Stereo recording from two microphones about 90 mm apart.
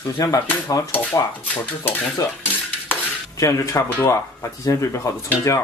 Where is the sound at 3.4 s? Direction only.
35° left (ahead or behind).